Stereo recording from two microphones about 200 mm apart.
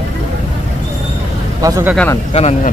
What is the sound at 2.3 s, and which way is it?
Speech, 30° left (ahead or behind).